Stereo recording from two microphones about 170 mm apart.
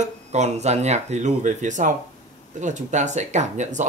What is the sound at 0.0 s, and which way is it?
Speech, 40° right (ahead or behind).